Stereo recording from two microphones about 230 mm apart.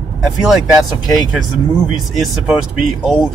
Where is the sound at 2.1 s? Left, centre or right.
Centre.